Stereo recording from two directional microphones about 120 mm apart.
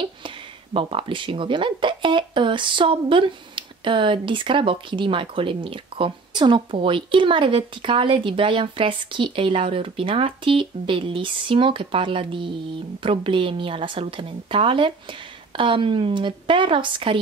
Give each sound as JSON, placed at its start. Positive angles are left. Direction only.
{"t": 0.7, "sound": "speech", "side_deg": -45}